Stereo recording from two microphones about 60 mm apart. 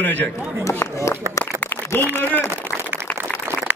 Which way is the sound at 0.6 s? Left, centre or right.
Left.